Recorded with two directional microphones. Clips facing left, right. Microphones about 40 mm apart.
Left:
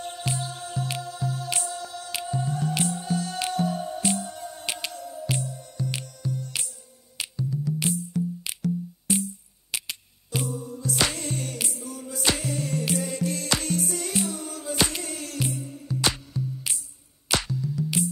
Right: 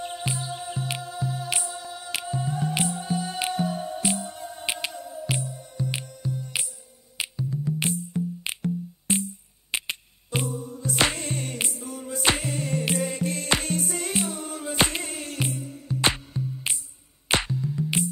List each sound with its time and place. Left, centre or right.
0.2 s music: centre